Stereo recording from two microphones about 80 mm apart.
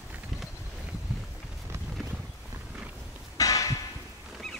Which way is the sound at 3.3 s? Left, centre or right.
Left.